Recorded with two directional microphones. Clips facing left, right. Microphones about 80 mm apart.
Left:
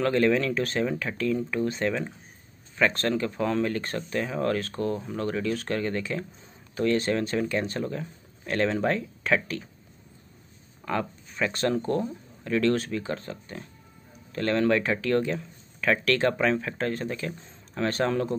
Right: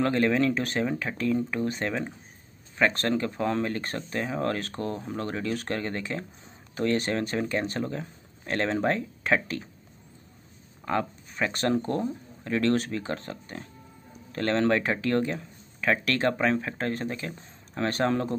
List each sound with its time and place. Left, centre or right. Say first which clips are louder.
0.0 s speech: left 1 dB; right
3.0 s speech: even; right
10.9 s a sound: right 1 dB; right
12.0 s speech: right 1 dB; right